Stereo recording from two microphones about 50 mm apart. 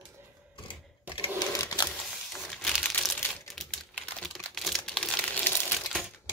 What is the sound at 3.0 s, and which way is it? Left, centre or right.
Crumpling, centre.